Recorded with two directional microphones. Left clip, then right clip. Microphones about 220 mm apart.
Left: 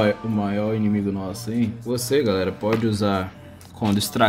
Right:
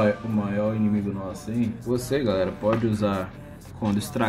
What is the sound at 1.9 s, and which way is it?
Speech, 60° left (ahead or behind).